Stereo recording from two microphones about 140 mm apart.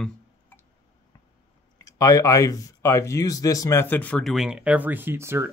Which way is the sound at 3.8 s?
10° left (ahead or behind).